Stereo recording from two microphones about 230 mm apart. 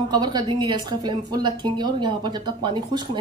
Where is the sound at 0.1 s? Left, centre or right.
Centre.